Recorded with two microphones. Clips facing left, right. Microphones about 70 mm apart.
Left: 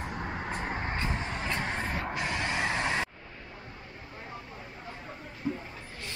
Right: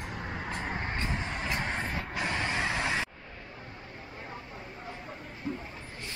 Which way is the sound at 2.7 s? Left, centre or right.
Left.